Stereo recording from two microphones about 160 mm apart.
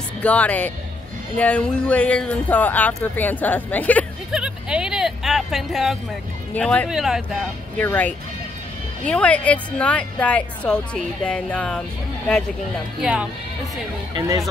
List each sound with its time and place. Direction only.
0.2 s speech: 10° left (ahead or behind)
4.3 s a sound: 5° right (ahead or behind)
6.5 s speech: 5° left (ahead or behind)
7.7 s speech: 10° left (ahead or behind)
13.0 s speech: 5° right (ahead or behind)
14.1 s speech: 25° right (ahead or behind)